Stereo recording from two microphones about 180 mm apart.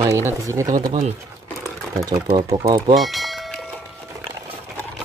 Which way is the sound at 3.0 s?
Centre (ahead or behind).